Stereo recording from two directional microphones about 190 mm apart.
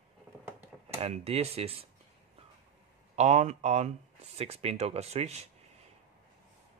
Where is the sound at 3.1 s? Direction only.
35° right (ahead or behind).